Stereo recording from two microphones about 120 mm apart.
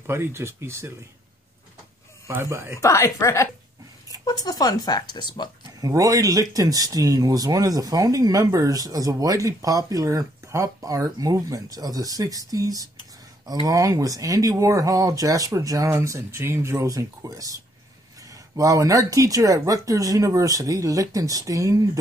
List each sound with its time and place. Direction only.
0.0 s speech: 20° right (ahead or behind)
2.2 s speech: 20° right (ahead or behind)
2.8 s speech: 25° left (ahead or behind)
4.2 s speech: 35° left (ahead or behind)
5.8 s speech: 30° right (ahead or behind)
18.6 s speech: 30° right (ahead or behind)